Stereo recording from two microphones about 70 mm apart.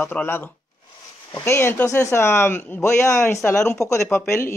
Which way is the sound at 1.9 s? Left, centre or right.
Left.